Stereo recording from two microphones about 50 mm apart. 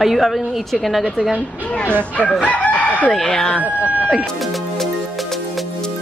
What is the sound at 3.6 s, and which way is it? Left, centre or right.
Speech, right.